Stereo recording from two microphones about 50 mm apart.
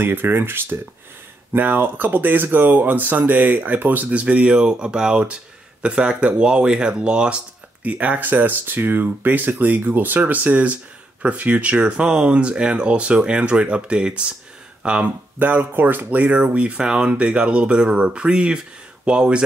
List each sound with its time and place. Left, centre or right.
0.0 s speech: right
1.5 s speech: right
7.8 s speech: right
15.3 s speech: right; by 19.4 s centre